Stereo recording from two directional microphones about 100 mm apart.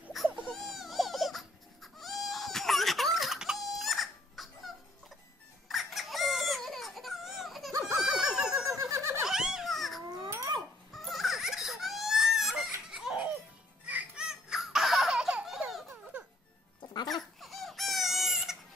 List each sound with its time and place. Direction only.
0.2 s baby cry: centre (ahead or behind)
5.7 s a sound: centre (ahead or behind)
8.9 s giggle: 30° right (ahead or behind)
9.2 s a sound: 5° right (ahead or behind)
10.9 s baby cry: centre (ahead or behind)
13.8 s baby laughter: 10° right (ahead or behind)
15.9 s music: 20° right (ahead or behind)
17.1 s crying: centre (ahead or behind)